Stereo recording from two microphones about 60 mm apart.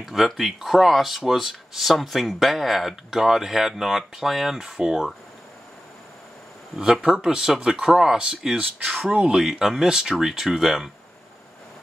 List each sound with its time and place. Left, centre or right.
0.0 s speech: centre
6.8 s speech: centre